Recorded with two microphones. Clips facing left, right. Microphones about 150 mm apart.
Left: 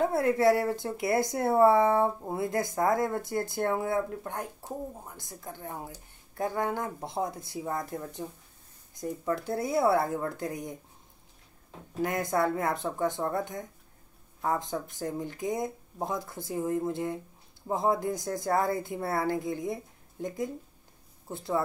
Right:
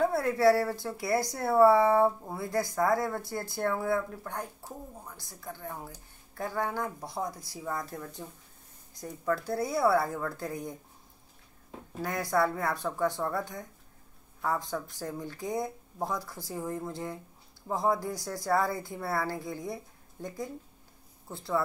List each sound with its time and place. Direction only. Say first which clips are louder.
0.1 s speech: left 1 dB; 20° left (ahead or behind)
12.0 s a woman's voice: left 1 dB; 20° left (ahead or behind)
21.3 s speech: left 1 dB; 20° left (ahead or behind)